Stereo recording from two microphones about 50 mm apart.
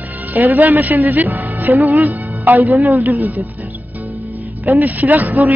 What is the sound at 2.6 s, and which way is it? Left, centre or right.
Speech, centre.